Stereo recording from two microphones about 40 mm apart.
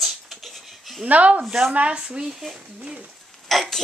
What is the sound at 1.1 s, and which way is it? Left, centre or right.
Speech, right.